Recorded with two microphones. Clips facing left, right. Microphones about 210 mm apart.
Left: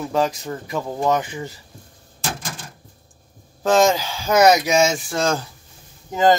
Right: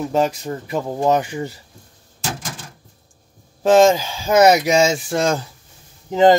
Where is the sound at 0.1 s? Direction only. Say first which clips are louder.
Even; 25° right (ahead or behind).